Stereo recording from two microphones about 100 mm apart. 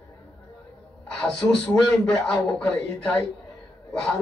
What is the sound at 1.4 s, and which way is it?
Speech, 30° left (ahead or behind).